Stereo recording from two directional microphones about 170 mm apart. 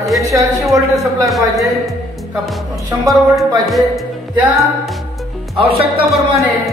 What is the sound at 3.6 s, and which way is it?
Music, centre (ahead or behind).